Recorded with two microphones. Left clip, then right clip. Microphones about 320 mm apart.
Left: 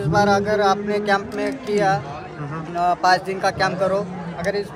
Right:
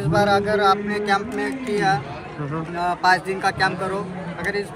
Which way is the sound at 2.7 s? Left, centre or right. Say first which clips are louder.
Left 2 dB; left.